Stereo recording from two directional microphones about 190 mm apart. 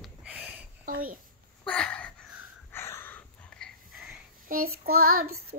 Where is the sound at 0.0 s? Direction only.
5° right (ahead or behind).